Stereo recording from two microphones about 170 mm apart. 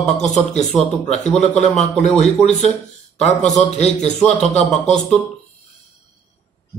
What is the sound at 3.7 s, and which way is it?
Speech, 40° left (ahead or behind).